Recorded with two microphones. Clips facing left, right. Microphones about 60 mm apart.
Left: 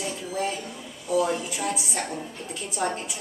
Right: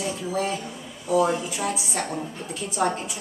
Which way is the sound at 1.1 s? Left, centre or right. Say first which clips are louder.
Right 3 dB; centre.